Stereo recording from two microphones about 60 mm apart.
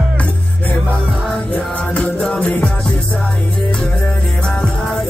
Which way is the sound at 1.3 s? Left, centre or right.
Centre.